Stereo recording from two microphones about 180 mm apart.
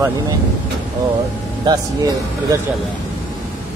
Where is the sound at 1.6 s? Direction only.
20° right (ahead or behind).